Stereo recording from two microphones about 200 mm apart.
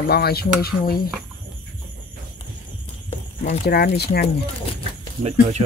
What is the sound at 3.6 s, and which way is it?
Speech, 50° left (ahead or behind).